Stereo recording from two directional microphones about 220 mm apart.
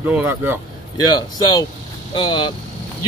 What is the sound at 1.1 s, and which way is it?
Speech, 20° left (ahead or behind).